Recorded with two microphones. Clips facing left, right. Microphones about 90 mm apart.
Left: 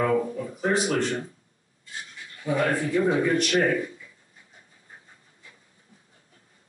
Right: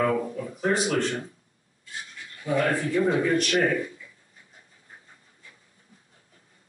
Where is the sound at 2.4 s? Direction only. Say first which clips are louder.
Even; 5° left (ahead or behind).